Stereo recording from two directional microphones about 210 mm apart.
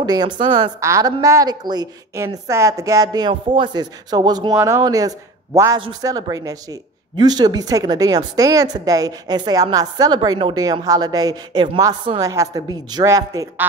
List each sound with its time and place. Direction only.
0.0 s a woman's voice: 20° right (ahead or behind)